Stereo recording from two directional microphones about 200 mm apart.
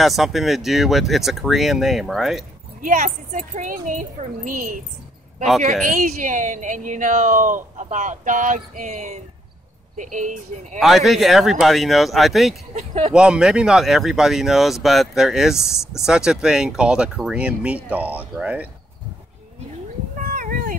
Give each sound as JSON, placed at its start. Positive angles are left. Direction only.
{"t": 0.0, "sound": "speech", "side_deg": 0}
{"t": 2.8, "sound": "speech", "side_deg": -40}
{"t": 5.9, "sound": "speech", "side_deg": -40}
{"t": 10.8, "sound": "speech", "side_deg": 0}
{"t": 12.7, "sound": "speech", "side_deg": -35}
{"t": 13.1, "sound": "speech", "side_deg": -5}
{"t": 20.3, "sound": "cat", "side_deg": -40}